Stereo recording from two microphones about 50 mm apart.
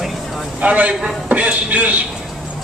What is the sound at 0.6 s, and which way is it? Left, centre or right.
A man's voice, right.